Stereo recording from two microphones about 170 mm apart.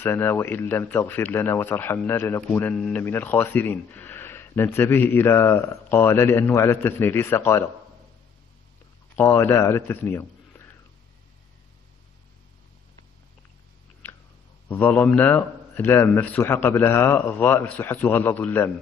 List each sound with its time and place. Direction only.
0.0 s speech: 10° left (ahead or behind)
9.1 s speech: 10° left (ahead or behind)
14.7 s speech: 10° left (ahead or behind)